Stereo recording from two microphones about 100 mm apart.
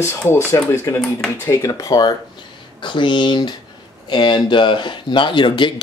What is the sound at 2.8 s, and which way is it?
Speech, 50° left (ahead or behind).